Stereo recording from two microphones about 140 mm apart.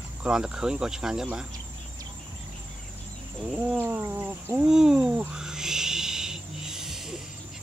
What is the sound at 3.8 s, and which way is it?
Speech, 15° right (ahead or behind).